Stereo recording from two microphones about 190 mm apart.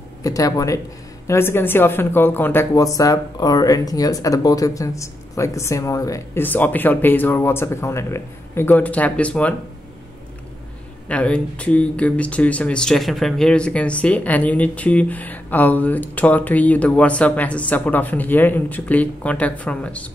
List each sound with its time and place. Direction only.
0.2 s speech: 20° left (ahead or behind)
11.1 s speech: 5° left (ahead or behind)